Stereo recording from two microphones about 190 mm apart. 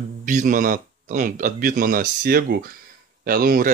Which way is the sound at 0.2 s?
40° right (ahead or behind).